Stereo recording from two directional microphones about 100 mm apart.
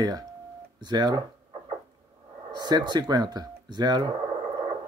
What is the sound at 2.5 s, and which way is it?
Speech, 45° right (ahead or behind).